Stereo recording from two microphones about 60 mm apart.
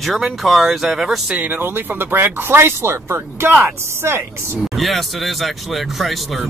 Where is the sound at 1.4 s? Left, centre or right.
Right.